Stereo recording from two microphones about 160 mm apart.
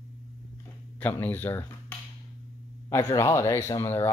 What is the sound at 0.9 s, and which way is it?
Speech, 10° left (ahead or behind).